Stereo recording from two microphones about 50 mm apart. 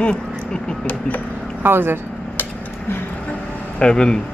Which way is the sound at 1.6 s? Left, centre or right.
Right.